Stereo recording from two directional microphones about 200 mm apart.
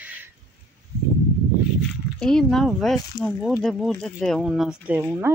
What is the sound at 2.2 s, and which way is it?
Speech, centre (ahead or behind).